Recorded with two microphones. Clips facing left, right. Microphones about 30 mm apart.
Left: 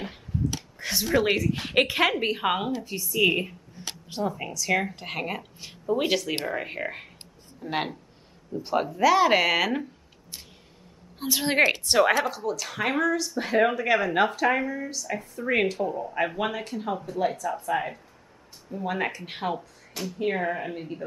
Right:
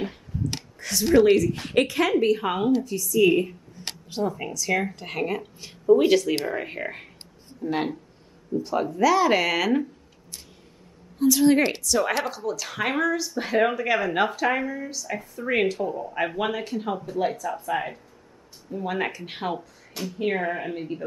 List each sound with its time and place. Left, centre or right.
0.7 s a sound: left
1.4 s speech: centre
1.9 s a woman's voice: left
4.1 s speech: centre
7.6 s a woman's voice: centre
8.8 s speech: centre
11.1 s a woman's voice: left
11.9 s speech: left
12.3 s speech: centre